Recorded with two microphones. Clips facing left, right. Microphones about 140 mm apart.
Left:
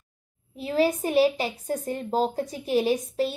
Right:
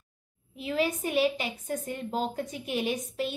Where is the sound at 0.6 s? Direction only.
35° left (ahead or behind).